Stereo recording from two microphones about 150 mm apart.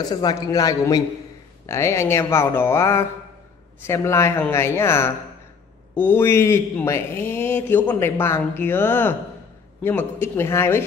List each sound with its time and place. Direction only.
0.1 s a man's voice: 25° left (ahead or behind)